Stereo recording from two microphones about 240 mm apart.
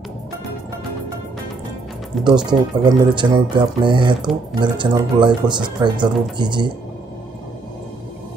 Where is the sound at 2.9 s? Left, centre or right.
Centre.